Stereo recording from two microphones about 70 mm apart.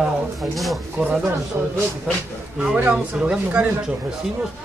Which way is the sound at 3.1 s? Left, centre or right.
Centre.